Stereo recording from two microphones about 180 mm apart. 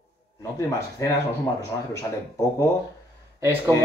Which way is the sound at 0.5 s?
15° left (ahead or behind).